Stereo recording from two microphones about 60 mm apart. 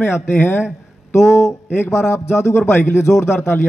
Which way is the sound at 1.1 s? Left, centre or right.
Left.